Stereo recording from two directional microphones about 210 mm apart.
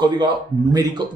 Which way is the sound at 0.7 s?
20° right (ahead or behind).